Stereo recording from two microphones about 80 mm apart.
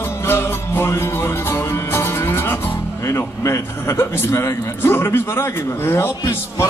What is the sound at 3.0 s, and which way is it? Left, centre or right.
A man's voice, left.